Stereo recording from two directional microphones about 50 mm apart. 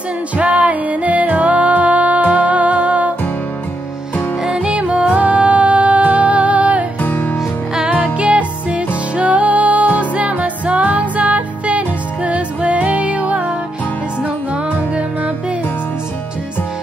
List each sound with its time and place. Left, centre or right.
0.4 s music: right
4.5 s music: centre
5.1 s music: right
7.0 s music: left
7.7 s music: centre
8.0 s music: right